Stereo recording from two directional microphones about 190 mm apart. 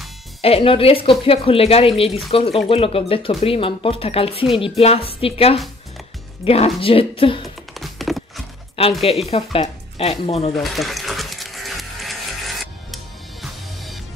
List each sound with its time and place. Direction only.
0.4 s speech: 30° left (ahead or behind)
7.7 s a sound: centre (ahead or behind)
9.0 s speech: 30° left (ahead or behind)
10.5 s music: centre (ahead or behind)